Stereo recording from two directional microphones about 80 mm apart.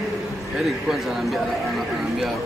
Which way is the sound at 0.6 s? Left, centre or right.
Centre.